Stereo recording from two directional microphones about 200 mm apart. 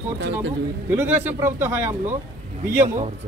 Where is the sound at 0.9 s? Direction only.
10° right (ahead or behind).